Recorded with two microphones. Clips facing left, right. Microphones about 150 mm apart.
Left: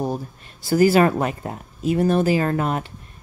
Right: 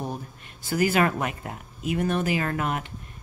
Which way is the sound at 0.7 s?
35° left (ahead or behind).